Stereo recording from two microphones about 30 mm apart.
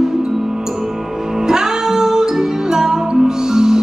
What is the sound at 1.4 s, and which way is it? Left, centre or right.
Music, right.